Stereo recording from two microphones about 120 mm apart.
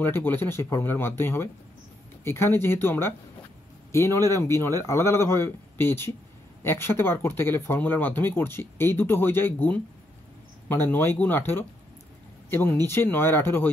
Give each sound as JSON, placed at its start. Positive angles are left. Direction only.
{"t": 0.0, "sound": "speech", "side_deg": 15}